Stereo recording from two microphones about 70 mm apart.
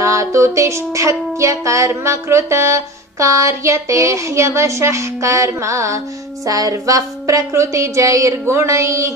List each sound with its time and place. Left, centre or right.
0.0 s music: right
6.4 s music: right